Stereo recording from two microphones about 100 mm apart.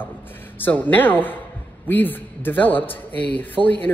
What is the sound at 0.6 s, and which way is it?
Speech, 20° left (ahead or behind).